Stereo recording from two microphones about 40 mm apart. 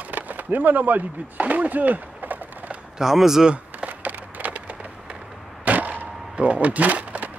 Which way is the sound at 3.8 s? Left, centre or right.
Right.